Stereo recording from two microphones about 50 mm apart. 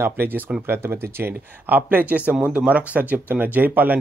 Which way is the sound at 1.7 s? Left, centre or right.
Right.